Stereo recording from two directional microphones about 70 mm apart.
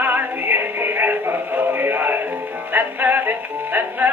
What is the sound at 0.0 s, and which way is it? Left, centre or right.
Music, right.